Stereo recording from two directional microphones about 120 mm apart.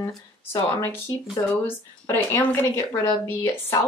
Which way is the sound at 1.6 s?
20° left (ahead or behind).